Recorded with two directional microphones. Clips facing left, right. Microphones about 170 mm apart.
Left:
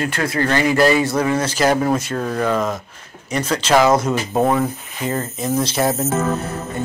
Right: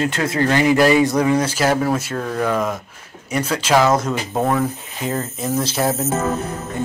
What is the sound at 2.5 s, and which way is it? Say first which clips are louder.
Speech: left 1 dB; 10° right (ahead or behind).